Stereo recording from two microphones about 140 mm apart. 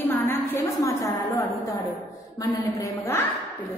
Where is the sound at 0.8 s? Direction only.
20° left (ahead or behind).